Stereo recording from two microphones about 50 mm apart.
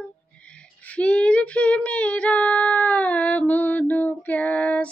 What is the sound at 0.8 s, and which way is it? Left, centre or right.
Female singing, left.